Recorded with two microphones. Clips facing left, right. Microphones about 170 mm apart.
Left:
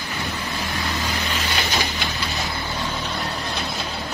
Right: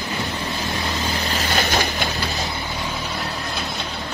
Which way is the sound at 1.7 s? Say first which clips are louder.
Right 3 dB; 50° right (ahead or behind).